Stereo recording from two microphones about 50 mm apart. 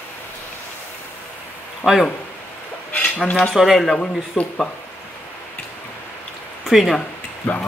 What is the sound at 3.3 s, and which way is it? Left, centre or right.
Cutlery, left.